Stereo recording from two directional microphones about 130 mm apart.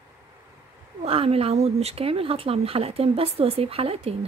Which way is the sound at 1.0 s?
50° right (ahead or behind).